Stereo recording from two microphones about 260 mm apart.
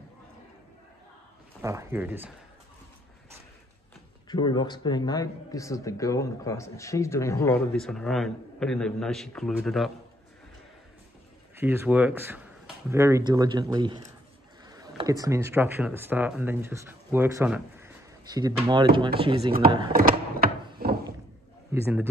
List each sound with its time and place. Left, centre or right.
1.6 s speech: centre
4.3 s speech: centre
11.5 s speech: centre
19.9 s a sound: right
20.8 s thunk: right
21.7 s speech: centre